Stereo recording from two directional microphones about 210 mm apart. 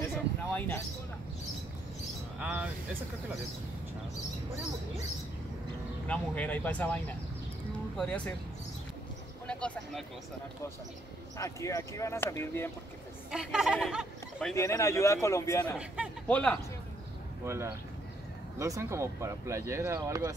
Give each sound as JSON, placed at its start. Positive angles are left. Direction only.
{"t": 0.0, "sound": "a sound", "side_deg": 10}
{"t": 2.4, "sound": "speech", "side_deg": -5}
{"t": 6.0, "sound": "speech", "side_deg": 5}
{"t": 8.0, "sound": "speech", "side_deg": 5}
{"t": 9.5, "sound": "speech", "side_deg": 5}
{"t": 11.3, "sound": "speech", "side_deg": 15}
{"t": 13.3, "sound": "speech", "side_deg": -5}
{"t": 14.5, "sound": "a man's voice", "side_deg": 15}
{"t": 17.5, "sound": "speech", "side_deg": -10}